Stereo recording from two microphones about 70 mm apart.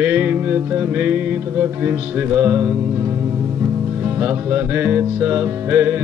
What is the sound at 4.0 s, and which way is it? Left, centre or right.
Music, right.